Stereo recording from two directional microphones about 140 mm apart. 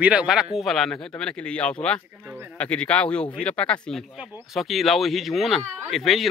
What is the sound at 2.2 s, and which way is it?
Bird, 10° right (ahead or behind).